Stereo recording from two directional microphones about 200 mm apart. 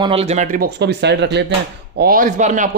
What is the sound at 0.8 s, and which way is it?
Speech, 60° right (ahead or behind).